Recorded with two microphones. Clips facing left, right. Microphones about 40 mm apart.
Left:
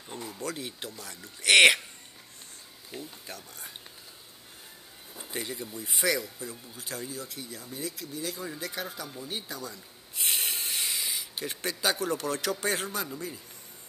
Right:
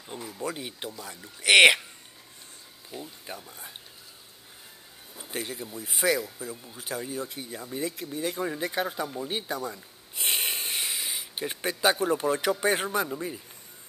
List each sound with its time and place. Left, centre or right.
0.0 s speech: centre
3.0 s speech: right
5.3 s speech: centre; by 10.8 s right
10.8 s speech: centre